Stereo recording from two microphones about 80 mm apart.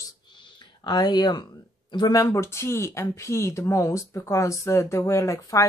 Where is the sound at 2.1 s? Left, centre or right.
Left.